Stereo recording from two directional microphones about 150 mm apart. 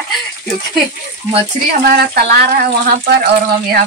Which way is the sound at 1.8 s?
90° right.